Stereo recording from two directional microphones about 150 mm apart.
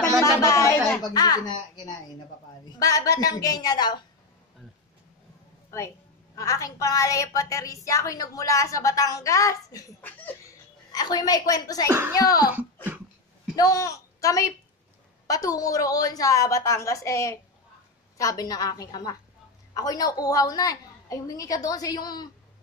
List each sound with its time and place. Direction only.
0.4 s a sound: 20° left (ahead or behind)
1.0 s a woman's voice: 25° left (ahead or behind)
2.8 s a woman's voice: 25° left (ahead or behind)
6.3 s a woman's voice: 20° left (ahead or behind)
10.0 s speech: 10° left (ahead or behind)
10.9 s a woman's voice: 25° left (ahead or behind)
13.6 s a woman's voice: 25° left (ahead or behind)